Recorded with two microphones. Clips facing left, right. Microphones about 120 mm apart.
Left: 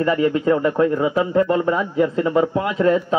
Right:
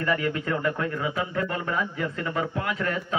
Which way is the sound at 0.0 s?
25° left (ahead or behind).